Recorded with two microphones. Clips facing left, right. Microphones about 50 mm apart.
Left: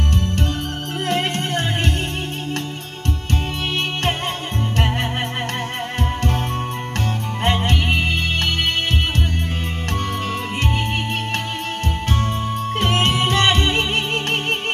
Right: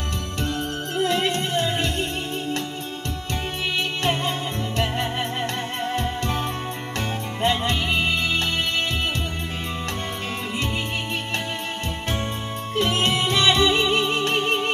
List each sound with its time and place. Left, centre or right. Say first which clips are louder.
0.9 s music: even; left
7.4 s music: left 2 dB; left
12.7 s music: left 1 dB; left